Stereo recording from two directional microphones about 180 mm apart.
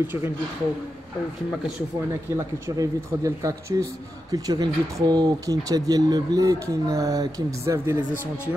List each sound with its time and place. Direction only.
0.0 s speech: 10° right (ahead or behind)
2.0 s speech: 15° right (ahead or behind)